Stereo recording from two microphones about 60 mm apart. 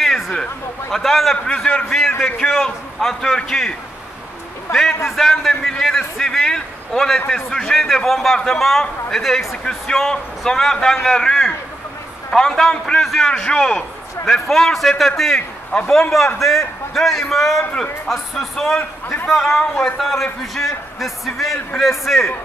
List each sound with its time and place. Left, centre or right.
0.0 s a man's voice: centre
4.7 s a man's voice: left
5.0 s a man's voice: centre
18.8 s a man's voice: left
19.2 s a man's voice: centre